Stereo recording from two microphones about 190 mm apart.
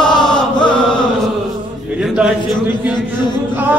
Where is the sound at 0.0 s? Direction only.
5° left (ahead or behind).